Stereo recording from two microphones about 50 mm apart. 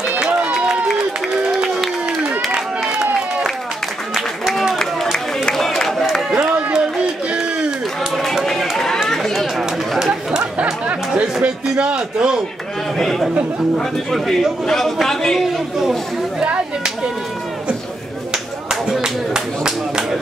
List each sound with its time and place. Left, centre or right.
0.1 s run: right
4.1 s a sound: centre
5.1 s a sound: centre
5.8 s crowd: centre
6.3 s run: right
8.7 s run: centre
9.0 s chatter: centre
9.6 s chatter: centre
10.6 s chatter: right
11.7 s a man's voice: centre
12.9 s a man's voice: centre
16.4 s a sound: centre
18.3 s a sound: centre